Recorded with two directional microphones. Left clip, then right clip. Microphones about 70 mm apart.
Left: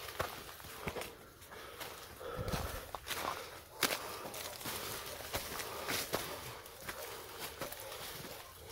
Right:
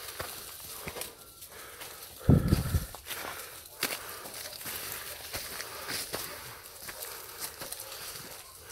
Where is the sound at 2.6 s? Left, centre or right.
Centre.